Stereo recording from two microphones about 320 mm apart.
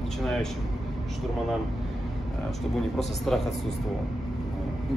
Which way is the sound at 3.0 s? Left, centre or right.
Centre.